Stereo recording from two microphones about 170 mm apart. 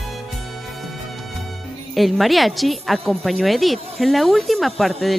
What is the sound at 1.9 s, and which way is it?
A woman's voice, centre (ahead or behind).